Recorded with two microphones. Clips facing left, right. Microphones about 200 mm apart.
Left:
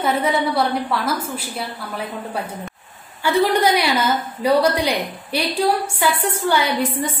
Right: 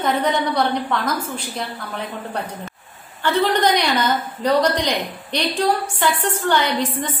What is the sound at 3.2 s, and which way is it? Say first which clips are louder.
A woman's voice: left 1 dB; 10° left (ahead or behind).